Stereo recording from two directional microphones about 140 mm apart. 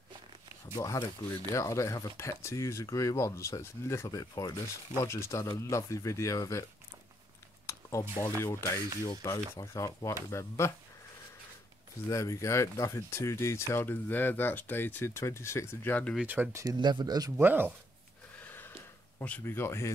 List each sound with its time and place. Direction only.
0.7 s speech: 25° left (ahead or behind)
7.6 s a sound: 20° left (ahead or behind)
8.2 s speech: 15° left (ahead or behind)
12.1 s speech: 20° left (ahead or behind)
16.2 s speech: 15° right (ahead or behind)
16.6 s speech: 30° right (ahead or behind)
17.4 s speech: 15° right (ahead or behind)
18.4 s a sound: 15° left (ahead or behind)
19.1 s speech: 15° left (ahead or behind)